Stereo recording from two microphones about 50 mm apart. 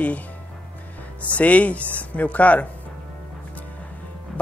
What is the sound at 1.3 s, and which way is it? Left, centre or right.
A woman's voice, left.